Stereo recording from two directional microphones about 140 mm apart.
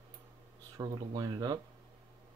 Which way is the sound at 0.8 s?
25° right (ahead or behind).